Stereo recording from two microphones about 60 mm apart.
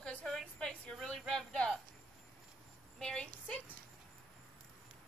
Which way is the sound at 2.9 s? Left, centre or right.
Centre.